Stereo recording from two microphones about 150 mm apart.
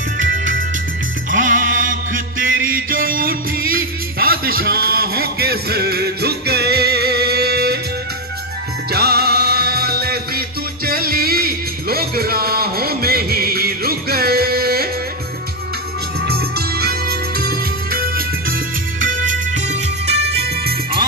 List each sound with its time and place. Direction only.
1.3 s mantra: 60° right (ahead or behind); by 7.8 s 90° right
8.9 s music: 90° right
16.3 s music: 90° right
18.9 s music: 60° right (ahead or behind)
20.2 s music: 90° right